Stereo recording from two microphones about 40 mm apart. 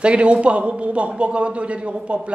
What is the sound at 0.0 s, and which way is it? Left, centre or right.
A man's voice, right.